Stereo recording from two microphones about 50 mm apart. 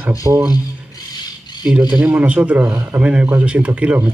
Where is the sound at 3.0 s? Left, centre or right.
Right.